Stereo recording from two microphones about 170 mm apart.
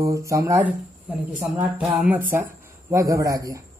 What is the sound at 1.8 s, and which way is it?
Speech, 5° right (ahead or behind).